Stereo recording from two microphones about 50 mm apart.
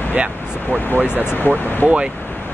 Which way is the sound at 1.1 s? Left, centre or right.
Left.